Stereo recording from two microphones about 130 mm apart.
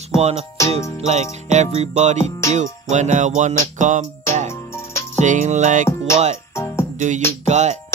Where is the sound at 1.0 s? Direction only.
55° right (ahead or behind).